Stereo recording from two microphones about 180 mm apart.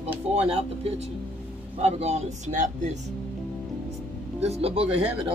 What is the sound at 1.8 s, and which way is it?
Speech, 35° right (ahead or behind).